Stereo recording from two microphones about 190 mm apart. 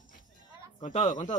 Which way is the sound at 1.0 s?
35° left (ahead or behind).